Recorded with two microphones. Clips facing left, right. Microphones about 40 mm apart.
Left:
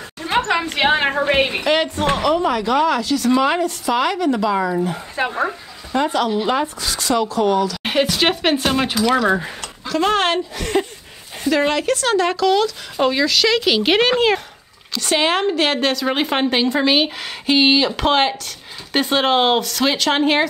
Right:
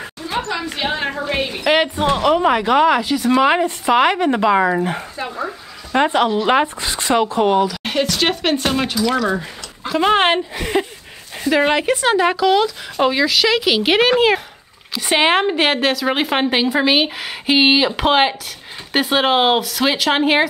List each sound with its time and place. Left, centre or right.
0.5 s a woman's voice: left
1.6 s a woman's voice: centre; by 5.0 s right
5.1 s a woman's voice: left
5.9 s a woman's voice: right
7.8 s a woman's voice: centre
9.0 s a woman's voice: centre
9.8 s a woman's voice: centre
15.0 s a woman's voice: right